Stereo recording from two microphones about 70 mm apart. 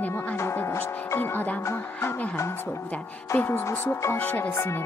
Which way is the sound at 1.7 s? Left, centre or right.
Left.